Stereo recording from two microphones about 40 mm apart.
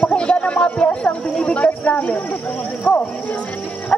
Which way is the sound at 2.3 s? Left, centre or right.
Left.